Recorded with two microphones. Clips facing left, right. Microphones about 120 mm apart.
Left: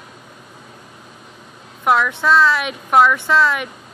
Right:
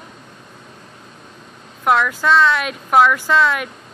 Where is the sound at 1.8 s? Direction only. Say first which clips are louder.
Even; centre (ahead or behind).